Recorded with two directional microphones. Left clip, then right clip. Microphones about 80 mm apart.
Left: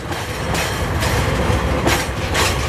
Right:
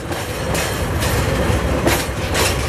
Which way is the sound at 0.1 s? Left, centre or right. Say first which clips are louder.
Even; left.